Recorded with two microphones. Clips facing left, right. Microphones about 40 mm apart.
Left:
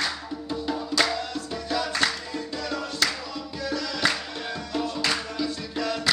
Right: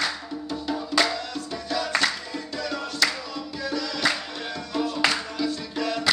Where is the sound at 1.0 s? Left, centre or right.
Centre.